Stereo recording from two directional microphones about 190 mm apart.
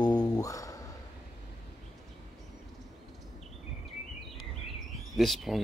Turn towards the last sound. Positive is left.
turn(degrees=0)  # may be behind; listen again after turning